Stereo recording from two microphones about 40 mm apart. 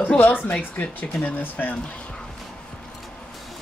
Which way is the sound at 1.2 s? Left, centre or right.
Left.